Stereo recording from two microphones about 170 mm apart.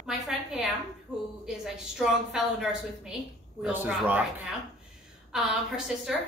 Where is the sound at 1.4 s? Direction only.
5° right (ahead or behind).